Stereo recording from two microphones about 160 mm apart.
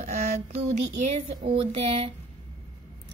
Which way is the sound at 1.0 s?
40° right (ahead or behind).